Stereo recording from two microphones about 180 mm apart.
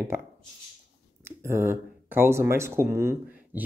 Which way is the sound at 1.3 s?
15° right (ahead or behind).